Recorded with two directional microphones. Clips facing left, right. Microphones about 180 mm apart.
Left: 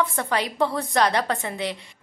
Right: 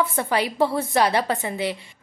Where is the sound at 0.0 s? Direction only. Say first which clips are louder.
Right 2 dB; 10° right (ahead or behind).